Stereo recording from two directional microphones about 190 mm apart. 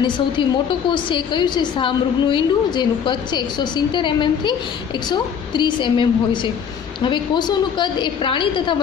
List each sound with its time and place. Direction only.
0.0 s a woman's voice: 25° left (ahead or behind)